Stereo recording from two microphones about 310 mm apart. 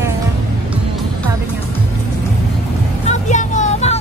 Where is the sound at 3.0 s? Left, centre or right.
Left.